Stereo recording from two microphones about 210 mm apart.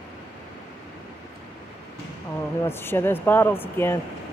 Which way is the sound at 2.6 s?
10° left (ahead or behind).